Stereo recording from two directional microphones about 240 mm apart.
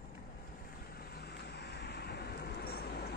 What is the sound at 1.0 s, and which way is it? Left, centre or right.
Vehicle, left.